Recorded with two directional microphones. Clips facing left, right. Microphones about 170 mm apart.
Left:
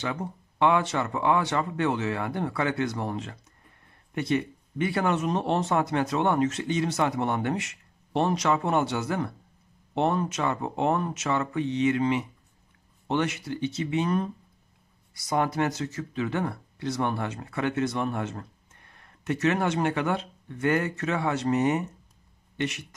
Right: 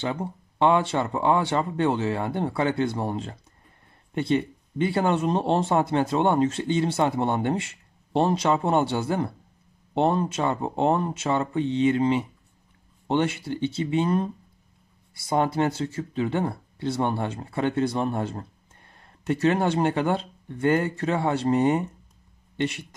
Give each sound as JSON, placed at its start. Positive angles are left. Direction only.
{"t": 0.0, "sound": "speech", "side_deg": -30}